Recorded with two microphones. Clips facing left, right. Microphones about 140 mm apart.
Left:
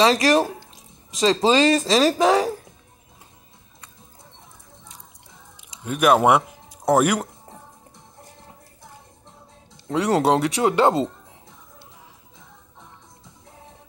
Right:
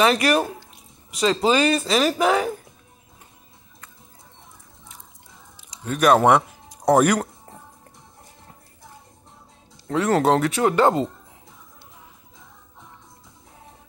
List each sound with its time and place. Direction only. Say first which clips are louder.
0.0 s speech: left 2 dB; 35° left (ahead or behind)
5.9 s speech: right 1 dB; 5° left (ahead or behind)
9.8 s speech: even; 20° left (ahead or behind)